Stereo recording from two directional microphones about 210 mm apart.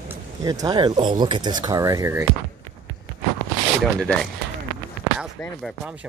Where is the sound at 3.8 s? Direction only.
Centre (ahead or behind).